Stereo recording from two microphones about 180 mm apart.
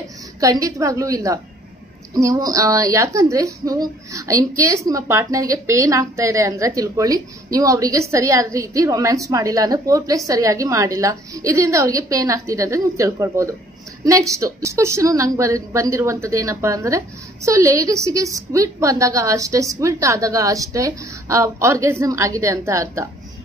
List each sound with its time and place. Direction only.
0.4 s a woman's voice: 20° right (ahead or behind)